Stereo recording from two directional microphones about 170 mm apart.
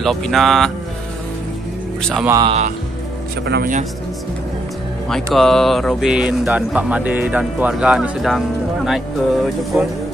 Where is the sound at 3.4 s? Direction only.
70° right (ahead or behind).